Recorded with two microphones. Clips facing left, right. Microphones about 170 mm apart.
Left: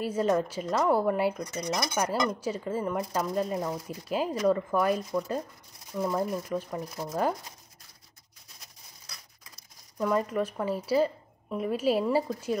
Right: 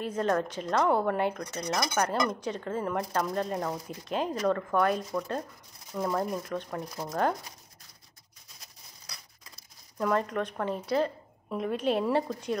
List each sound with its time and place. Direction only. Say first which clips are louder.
0.0 s a woman's voice: left 2 dB; 5° left (ahead or behind)
9.9 s a woman's voice: left 1 dB; 5° left (ahead or behind)